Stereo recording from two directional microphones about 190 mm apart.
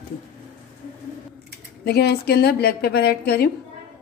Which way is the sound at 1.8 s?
60° left (ahead or behind).